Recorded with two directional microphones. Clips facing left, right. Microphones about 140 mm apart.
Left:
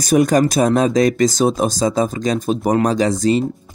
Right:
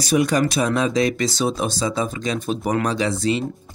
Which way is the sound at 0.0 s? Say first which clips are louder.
Left 5 dB; 45° left (ahead or behind).